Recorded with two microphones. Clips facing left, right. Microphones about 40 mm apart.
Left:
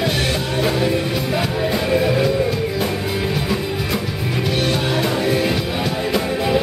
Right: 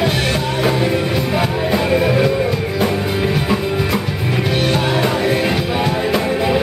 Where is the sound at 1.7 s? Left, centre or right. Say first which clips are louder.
Right 3 dB; centre.